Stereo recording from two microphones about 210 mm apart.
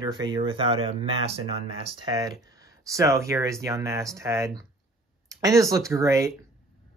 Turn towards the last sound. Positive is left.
turn(degrees=-15)  # may be behind; listen again after turning